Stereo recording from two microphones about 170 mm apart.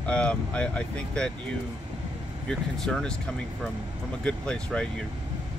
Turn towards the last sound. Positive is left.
turn(degrees=5)  # may be behind; listen again after turning